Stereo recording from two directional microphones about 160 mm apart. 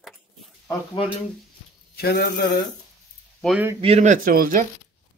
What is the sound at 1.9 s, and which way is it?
Speech, 75° left (ahead or behind).